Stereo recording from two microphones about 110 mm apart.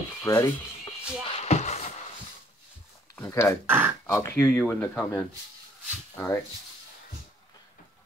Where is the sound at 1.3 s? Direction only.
85° left.